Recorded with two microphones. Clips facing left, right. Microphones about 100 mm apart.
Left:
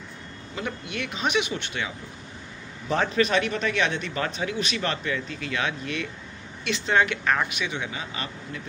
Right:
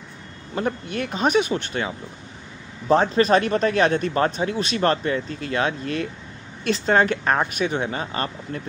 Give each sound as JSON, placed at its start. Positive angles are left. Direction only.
{"t": 0.6, "sound": "speech", "side_deg": -40}